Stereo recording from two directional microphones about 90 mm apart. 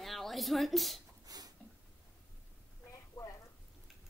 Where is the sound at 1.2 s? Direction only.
45° right (ahead or behind).